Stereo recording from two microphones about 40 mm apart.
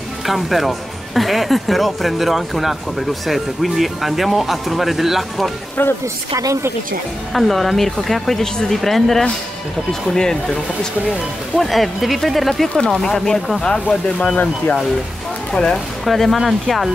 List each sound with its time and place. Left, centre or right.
0.3 s speech: centre
7.3 s speech: centre
11.5 s speech: centre
12.6 s speech: centre
15.5 s speech: centre
16.1 s speech: centre